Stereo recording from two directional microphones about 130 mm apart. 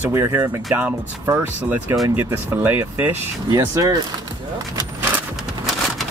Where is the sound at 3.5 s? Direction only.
25° right (ahead or behind).